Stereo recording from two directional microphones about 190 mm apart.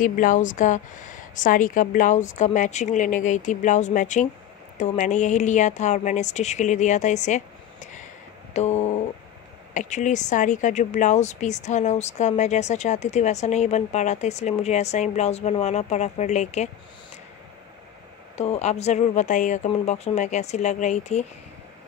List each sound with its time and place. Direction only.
0.0 s a woman's voice: 45° left (ahead or behind)
18.4 s a woman's voice: 35° left (ahead or behind)